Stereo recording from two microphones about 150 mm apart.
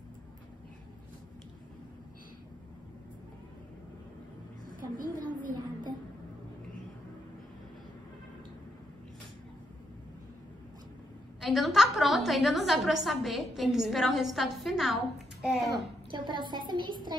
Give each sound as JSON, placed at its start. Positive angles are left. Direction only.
{"t": 4.7, "sound": "a sound", "side_deg": -65}
{"t": 11.4, "sound": "a woman's voice", "side_deg": 0}
{"t": 16.1, "sound": "a woman's voice", "side_deg": -30}